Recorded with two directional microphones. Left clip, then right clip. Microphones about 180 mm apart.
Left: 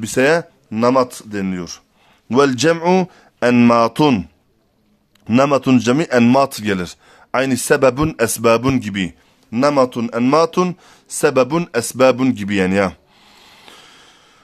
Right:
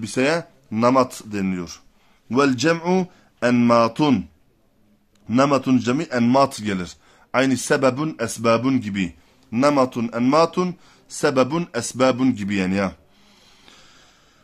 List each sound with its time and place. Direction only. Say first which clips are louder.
0.0 s speech: left 6 dB; 40° left (ahead or behind)
2.2 s speech: left 5 dB; 45° left (ahead or behind)
5.3 s speech: left 4 dB; 45° left (ahead or behind)